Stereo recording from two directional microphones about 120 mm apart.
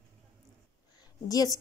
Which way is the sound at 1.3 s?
30° left (ahead or behind).